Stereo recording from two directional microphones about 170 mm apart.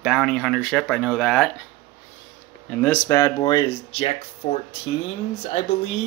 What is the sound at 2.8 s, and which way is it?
Speech, 15° left (ahead or behind).